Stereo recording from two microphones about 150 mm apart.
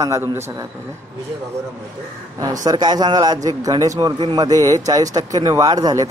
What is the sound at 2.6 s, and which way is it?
A man's voice, 30° right (ahead or behind).